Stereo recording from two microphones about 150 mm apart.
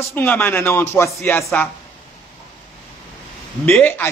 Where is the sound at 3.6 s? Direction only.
10° left (ahead or behind).